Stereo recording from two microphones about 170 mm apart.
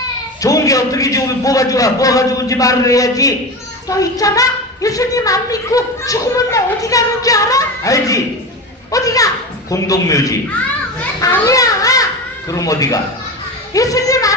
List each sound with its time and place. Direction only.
0.4 s a woman's voice: 20° left (ahead or behind)
11.1 s baby cry: 20° left (ahead or behind)
13.7 s a woman's voice: 20° left (ahead or behind)